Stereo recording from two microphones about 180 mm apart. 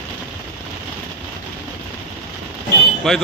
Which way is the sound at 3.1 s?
Centre (ahead or behind).